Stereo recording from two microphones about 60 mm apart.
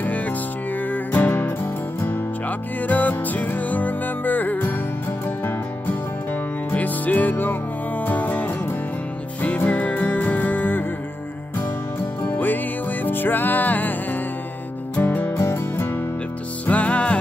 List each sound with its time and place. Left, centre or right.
0.0 s music: left
12.2 s music: left
15.3 s music: left
16.6 s music: left